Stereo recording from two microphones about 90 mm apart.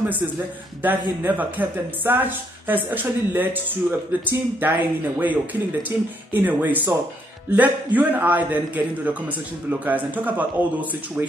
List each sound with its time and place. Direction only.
0.8 s speech: 20° right (ahead or behind)